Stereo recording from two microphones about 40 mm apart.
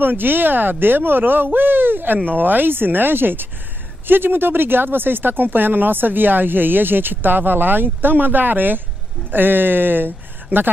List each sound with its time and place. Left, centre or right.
0.0 s speech: right
2.2 s speech: right